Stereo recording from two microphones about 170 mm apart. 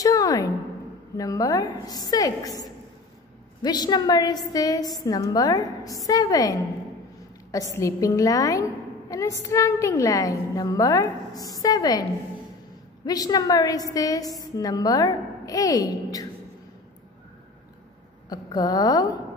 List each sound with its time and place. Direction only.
0.0 s a sound: 20° left (ahead or behind)
1.1 s a woman's voice: 20° left (ahead or behind)
18.3 s a woman's voice: 20° left (ahead or behind)